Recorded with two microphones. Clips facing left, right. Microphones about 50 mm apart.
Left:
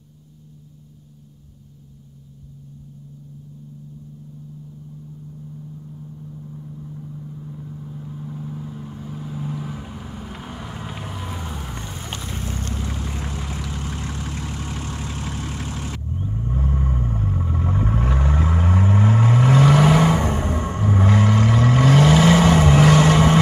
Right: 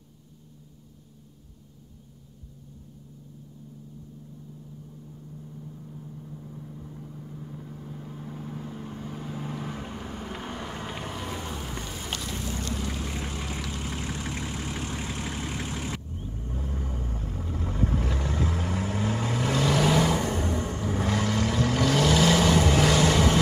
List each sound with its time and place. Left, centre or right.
5.3 s vehicle: centre
12.2 s vehicle: left
12.8 s vehicle: left
13.5 s vehicle: centre
13.7 s vehicle: left
14.6 s vehicle: centre
16.3 s vehicle: left